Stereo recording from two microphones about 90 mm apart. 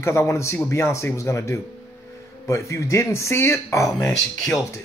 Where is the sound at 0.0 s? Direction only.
30° left (ahead or behind).